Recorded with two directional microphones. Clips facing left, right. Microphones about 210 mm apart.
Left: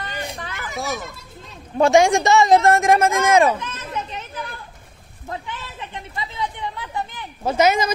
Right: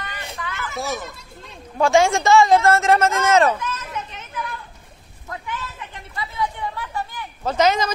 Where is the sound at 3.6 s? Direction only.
30° left (ahead or behind).